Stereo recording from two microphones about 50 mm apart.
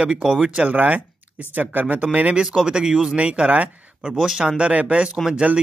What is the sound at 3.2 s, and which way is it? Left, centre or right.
Speech, right.